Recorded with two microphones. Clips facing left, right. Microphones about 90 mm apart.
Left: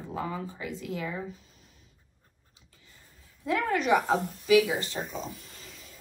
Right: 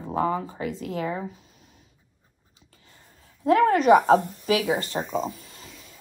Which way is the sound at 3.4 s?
50° right (ahead or behind).